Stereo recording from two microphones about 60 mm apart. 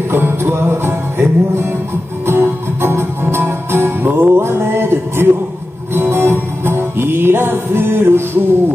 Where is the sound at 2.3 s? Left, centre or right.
Right.